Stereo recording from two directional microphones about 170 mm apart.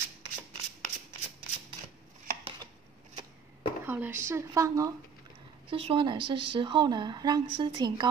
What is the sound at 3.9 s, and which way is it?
A woman's voice, 10° right (ahead or behind).